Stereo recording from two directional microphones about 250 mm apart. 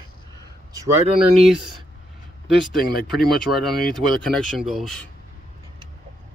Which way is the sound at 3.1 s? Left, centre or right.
Centre.